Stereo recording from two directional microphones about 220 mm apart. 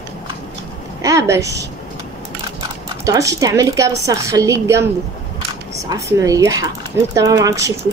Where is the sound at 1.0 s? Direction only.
15° right (ahead or behind).